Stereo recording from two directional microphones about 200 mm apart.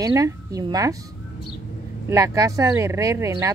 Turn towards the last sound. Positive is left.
turn(degrees=-15)  # may be behind; listen again after turning